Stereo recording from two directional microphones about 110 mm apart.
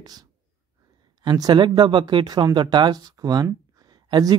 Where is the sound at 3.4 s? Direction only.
35° right (ahead or behind).